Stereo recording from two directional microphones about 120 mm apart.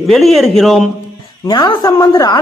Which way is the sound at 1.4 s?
40° left (ahead or behind).